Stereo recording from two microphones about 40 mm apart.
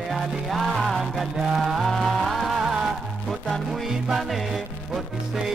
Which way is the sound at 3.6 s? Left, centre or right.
Centre.